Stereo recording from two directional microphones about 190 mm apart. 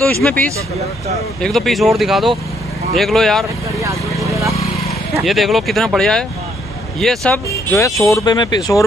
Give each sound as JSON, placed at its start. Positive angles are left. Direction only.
{"t": 0.2, "sound": "speech", "side_deg": 10}
{"t": 4.3, "sound": "vehicle", "side_deg": -15}
{"t": 5.2, "sound": "speech", "side_deg": 0}
{"t": 7.7, "sound": "speech", "side_deg": 15}